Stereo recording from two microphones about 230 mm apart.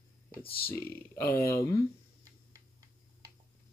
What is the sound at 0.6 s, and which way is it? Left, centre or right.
Speech, centre.